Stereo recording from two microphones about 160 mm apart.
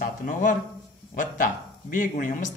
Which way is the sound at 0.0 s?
55° left (ahead or behind).